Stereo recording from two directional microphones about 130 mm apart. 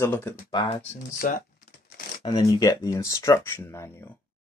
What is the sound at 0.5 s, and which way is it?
Speech, 40° left (ahead or behind).